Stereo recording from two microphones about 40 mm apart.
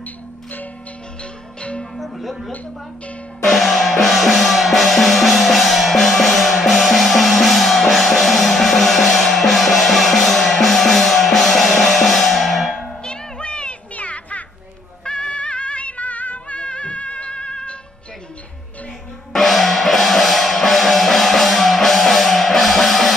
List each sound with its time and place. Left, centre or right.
1.6 s music: left
2.0 s music: centre
12.7 s music: left
13.9 s music: left
15.0 s music: left
16.5 s music: left
19.3 s music: centre